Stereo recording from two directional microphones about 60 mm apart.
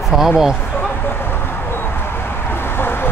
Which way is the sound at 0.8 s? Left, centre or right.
Left.